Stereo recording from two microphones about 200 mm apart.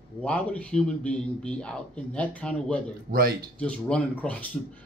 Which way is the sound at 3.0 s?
50° right (ahead or behind).